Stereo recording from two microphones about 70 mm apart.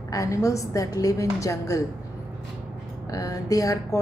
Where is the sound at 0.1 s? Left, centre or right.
Left.